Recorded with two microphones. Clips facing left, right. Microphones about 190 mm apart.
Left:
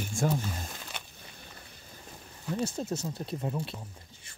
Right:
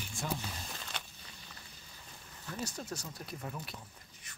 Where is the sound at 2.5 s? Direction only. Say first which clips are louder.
Left 9 dB; 25° left (ahead or behind).